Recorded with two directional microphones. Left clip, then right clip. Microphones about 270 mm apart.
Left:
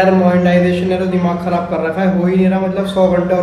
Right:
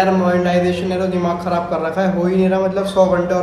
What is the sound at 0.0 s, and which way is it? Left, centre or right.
A man's voice, centre.